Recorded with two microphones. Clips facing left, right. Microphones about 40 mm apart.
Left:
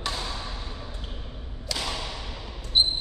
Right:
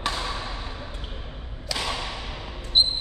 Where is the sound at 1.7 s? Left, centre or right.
Right.